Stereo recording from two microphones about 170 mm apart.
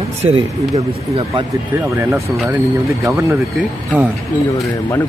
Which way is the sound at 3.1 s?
15° right (ahead or behind).